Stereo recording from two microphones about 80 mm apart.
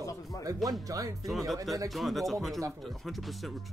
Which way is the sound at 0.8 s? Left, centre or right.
Right.